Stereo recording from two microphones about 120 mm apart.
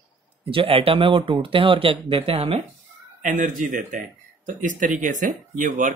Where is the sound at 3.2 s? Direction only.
90° right.